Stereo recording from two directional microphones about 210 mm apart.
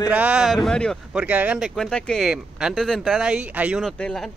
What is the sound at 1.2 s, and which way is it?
Speech, 5° right (ahead or behind).